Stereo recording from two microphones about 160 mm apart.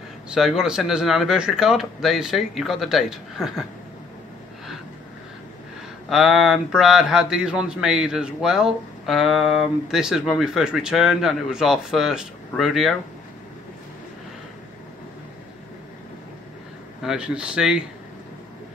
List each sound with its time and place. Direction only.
0.3 s speech: 5° right (ahead or behind)
6.0 s speech: centre (ahead or behind)
17.0 s speech: 5° right (ahead or behind)